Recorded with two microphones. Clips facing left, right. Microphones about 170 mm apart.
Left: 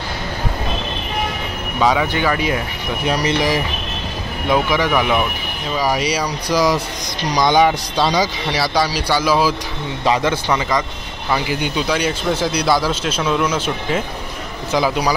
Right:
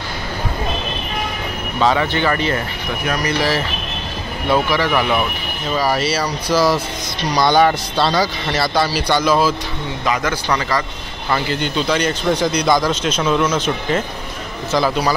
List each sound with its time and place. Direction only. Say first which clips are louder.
1.8 s speech: even; 10° left (ahead or behind)
4.9 s speech: left 1 dB; centre (ahead or behind)
5.8 s speech: even; 15° left (ahead or behind)
10.0 s speech: left 3 dB; 25° left (ahead or behind)
11.2 s speech: even; 10° left (ahead or behind)